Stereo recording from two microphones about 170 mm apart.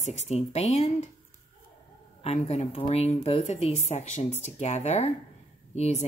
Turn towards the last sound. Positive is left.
turn(degrees=40)  # may be behind; listen again after turning